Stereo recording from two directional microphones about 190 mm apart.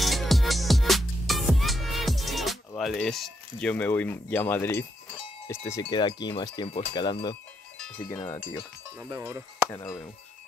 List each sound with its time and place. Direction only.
0.0 s music: centre (ahead or behind)
2.8 s speech: centre (ahead or behind)
9.1 s speech: 15° right (ahead or behind)
9.7 s speech: 15° left (ahead or behind)